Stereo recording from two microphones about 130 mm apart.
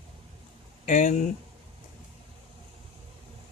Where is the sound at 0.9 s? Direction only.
70° left (ahead or behind).